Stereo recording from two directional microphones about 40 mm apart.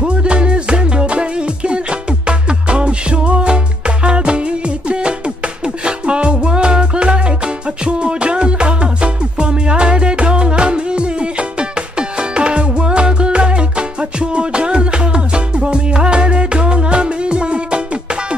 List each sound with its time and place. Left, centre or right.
0.0 s music: right